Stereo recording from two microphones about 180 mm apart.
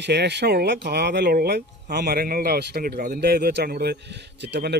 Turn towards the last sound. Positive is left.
turn(degrees=-70)  # may be behind; listen again after turning